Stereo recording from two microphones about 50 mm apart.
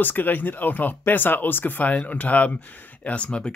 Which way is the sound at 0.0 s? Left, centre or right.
Left.